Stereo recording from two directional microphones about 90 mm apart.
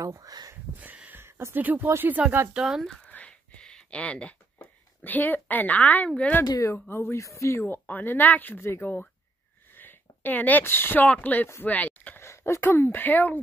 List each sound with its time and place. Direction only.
0.0 s speech: 40° right (ahead or behind)
0.7 s a sound: 15° right (ahead or behind)
1.2 s speech: 25° right (ahead or behind)
2.5 s speech: 5° right (ahead or behind)
3.1 s a sound: 15° left (ahead or behind)
6.0 s speech: 10° left (ahead or behind)
6.6 s speech: 30° left (ahead or behind)
7.6 s speech: 20° left (ahead or behind)
12.2 s speech: 30° left (ahead or behind)